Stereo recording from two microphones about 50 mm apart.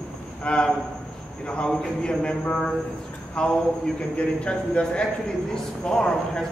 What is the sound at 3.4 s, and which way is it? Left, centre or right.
A man's voice, centre.